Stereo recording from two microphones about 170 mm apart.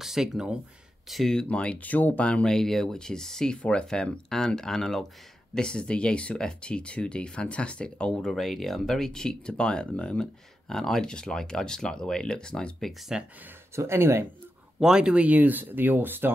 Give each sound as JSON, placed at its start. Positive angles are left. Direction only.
{"t": 0.0, "sound": "speech", "side_deg": 0}
{"t": 13.7, "sound": "speech", "side_deg": -15}
{"t": 14.8, "sound": "speech", "side_deg": -5}